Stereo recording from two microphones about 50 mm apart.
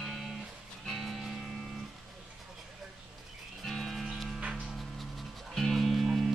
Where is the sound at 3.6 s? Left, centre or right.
Centre.